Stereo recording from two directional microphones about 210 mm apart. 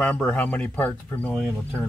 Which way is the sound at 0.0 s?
5° left (ahead or behind).